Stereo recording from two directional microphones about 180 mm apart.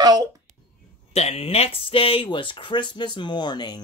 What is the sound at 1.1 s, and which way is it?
Speech, 35° left (ahead or behind).